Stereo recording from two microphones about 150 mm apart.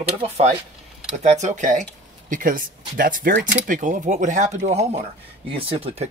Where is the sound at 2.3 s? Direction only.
65° right (ahead or behind).